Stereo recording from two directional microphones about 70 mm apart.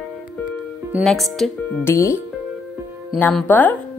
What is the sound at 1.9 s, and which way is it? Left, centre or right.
Speech, left.